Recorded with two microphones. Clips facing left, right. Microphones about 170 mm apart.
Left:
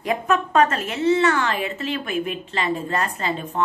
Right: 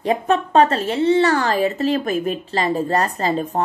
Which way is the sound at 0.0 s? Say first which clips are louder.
Right 3 dB; 30° right (ahead or behind).